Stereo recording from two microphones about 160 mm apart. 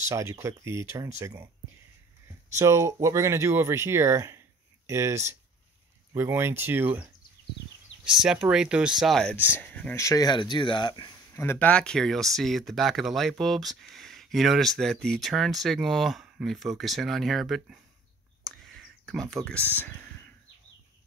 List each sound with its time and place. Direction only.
0.1 s speech: 20° right (ahead or behind)
2.5 s speech: 20° right (ahead or behind); by 11.4 s 25° left (ahead or behind)
11.4 s speech: 10° left (ahead or behind)
18.4 s a sound: centre (ahead or behind)
19.3 s speech: 5° left (ahead or behind)